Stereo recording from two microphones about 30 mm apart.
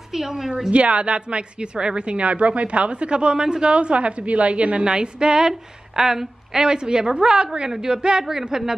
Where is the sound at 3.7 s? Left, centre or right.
Right.